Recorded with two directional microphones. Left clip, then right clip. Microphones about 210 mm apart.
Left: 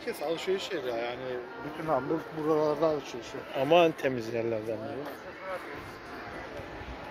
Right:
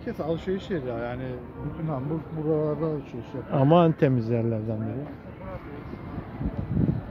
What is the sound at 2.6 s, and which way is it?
Speech, 35° left (ahead or behind).